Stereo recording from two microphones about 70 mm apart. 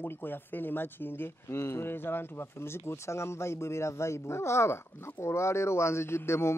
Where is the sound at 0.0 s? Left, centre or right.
Left.